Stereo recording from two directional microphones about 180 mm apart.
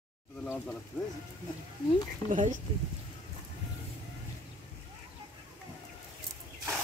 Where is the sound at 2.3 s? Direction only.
45° right (ahead or behind).